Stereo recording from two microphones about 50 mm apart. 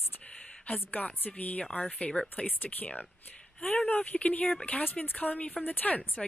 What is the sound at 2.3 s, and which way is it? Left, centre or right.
Speech, left.